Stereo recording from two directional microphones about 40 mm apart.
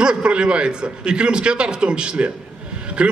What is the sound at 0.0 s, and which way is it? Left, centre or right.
A man's voice, right.